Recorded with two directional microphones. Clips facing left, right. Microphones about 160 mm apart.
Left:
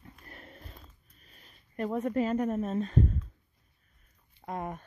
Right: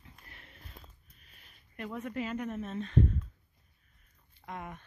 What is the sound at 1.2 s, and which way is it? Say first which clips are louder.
Speech: left 5 dB; 40° left (ahead or behind).